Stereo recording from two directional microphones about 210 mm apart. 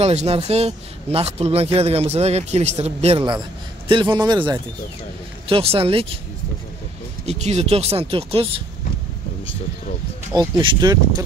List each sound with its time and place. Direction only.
0.0 s speech: 30° right (ahead or behind)
7.2 s speech: 30° right (ahead or behind)
10.3 s speech: 20° right (ahead or behind)